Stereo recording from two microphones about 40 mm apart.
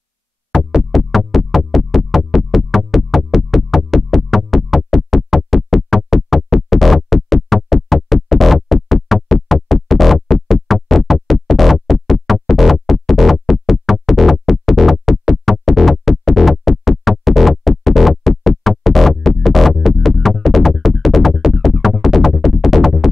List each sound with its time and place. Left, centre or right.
0.7 s music: centre